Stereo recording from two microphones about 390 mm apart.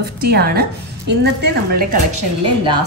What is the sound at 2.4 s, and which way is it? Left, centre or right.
Speech, centre.